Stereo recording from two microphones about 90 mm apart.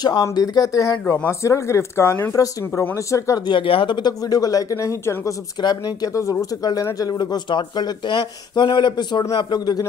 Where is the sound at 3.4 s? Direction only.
70° left (ahead or behind); by 5.4 s 35° left (ahead or behind).